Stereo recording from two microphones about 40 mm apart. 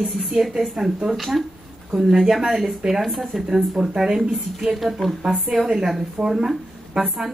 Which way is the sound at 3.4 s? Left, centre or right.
Centre.